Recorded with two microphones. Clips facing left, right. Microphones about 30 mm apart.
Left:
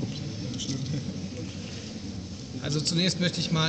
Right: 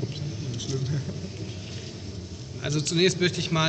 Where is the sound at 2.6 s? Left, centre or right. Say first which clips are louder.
Right 5 dB; right.